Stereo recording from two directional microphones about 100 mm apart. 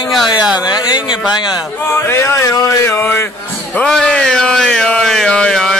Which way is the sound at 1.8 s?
25° left (ahead or behind).